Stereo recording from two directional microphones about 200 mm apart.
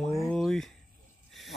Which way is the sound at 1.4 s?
Centre (ahead or behind).